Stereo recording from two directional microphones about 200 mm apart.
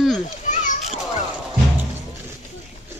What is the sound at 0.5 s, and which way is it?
Children playing, 35° left (ahead or behind).